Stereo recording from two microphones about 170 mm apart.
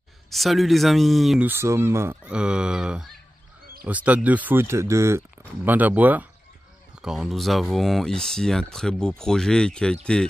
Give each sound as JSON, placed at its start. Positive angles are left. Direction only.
{"t": 0.3, "sound": "speech", "side_deg": 0}
{"t": 1.5, "sound": "speech", "side_deg": -15}